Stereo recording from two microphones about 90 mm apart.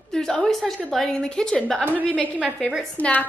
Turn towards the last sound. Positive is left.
turn(degrees=15)  # may be behind; listen again after turning